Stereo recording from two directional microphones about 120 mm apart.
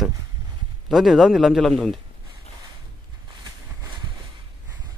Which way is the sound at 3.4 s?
35° right (ahead or behind).